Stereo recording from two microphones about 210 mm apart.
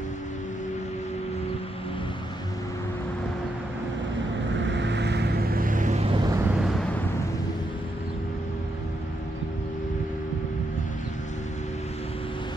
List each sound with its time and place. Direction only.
4.6 s vehicle: 55° right (ahead or behind); by 6.4 s 20° right (ahead or behind)
6.5 s vehicle: centre (ahead or behind)